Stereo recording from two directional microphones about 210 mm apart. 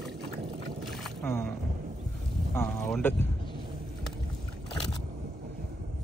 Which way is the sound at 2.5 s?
10° left (ahead or behind).